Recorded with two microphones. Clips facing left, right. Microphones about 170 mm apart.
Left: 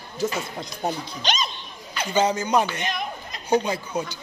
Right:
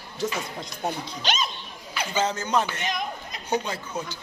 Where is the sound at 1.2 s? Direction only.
5° right (ahead or behind).